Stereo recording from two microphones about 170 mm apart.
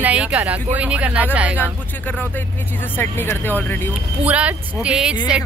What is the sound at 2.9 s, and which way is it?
Speech, 10° left (ahead or behind).